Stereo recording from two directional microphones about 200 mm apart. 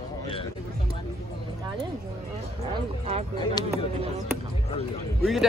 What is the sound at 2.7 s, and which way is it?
Speech, 30° right (ahead or behind).